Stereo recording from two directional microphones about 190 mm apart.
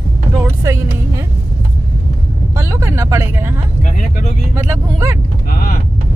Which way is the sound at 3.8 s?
40° left (ahead or behind).